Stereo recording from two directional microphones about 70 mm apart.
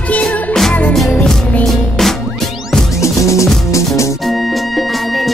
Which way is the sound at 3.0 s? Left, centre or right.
Left.